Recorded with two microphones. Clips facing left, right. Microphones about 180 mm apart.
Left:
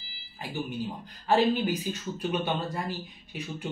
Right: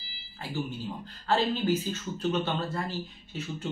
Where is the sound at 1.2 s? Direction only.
15° left (ahead or behind).